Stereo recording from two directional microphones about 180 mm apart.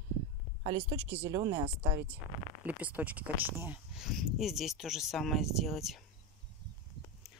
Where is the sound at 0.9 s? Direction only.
10° right (ahead or behind).